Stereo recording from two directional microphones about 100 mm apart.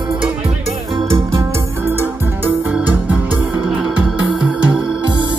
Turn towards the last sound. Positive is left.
turn(degrees=-10)  # may be behind; listen again after turning